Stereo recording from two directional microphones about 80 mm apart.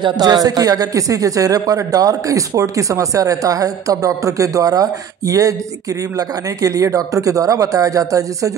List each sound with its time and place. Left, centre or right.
0.2 s speech: right